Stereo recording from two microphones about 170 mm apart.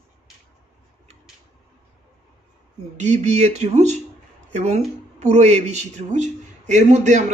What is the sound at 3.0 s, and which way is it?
Speech, 45° right (ahead or behind).